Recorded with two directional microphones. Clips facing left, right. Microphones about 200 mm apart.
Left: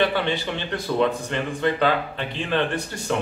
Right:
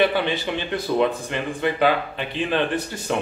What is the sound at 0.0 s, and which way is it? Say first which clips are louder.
A man's voice: right 2 dB; 15° right (ahead or behind).